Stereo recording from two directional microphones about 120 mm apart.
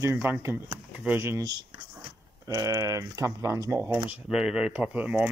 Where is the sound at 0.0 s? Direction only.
20° right (ahead or behind).